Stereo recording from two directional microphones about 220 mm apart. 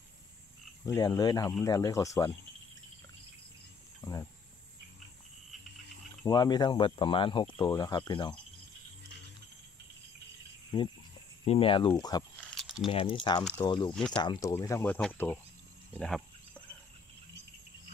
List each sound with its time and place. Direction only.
0.8 s speech: 15° left (ahead or behind)
4.0 s cricket: 15° left (ahead or behind)
6.2 s cricket: 15° left (ahead or behind)
10.7 s cricket: 20° left (ahead or behind)
12.4 s a sound: 5° left (ahead or behind)
12.8 s cricket: 25° left (ahead or behind)
14.1 s speech: 20° left (ahead or behind); by 16.2 s centre (ahead or behind)